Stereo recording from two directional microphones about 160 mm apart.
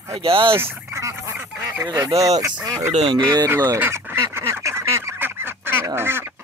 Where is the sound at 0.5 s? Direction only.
15° right (ahead or behind).